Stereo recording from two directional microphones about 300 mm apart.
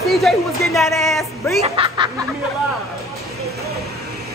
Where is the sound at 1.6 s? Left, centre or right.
Centre.